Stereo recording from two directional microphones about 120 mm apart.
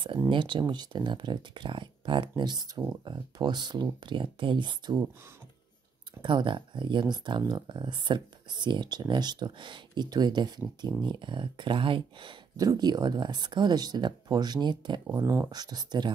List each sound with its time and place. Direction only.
0.3 s speech: 40° right (ahead or behind)
6.2 s speech: 40° right (ahead or behind)
12.5 s speech: 35° right (ahead or behind)
15.1 s speech: 20° right (ahead or behind)
15.5 s speech: 35° right (ahead or behind)